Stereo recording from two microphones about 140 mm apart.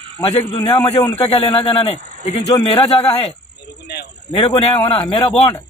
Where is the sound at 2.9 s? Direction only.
40° left (ahead or behind).